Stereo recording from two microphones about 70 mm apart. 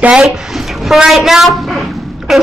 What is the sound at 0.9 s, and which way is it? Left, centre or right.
A woman's voice, centre.